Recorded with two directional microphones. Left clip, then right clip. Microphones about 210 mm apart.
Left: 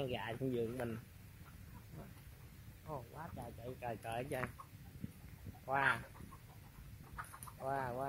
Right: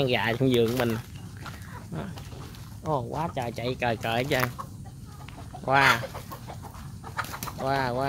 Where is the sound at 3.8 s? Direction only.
10° right (ahead or behind).